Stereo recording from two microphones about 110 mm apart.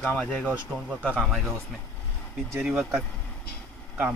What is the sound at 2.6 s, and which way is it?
Speech, 5° right (ahead or behind).